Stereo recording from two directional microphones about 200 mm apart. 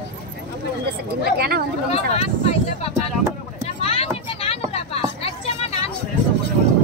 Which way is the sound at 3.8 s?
30° left (ahead or behind).